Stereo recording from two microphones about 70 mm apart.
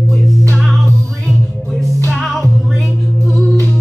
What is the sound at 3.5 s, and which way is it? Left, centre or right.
Music, centre.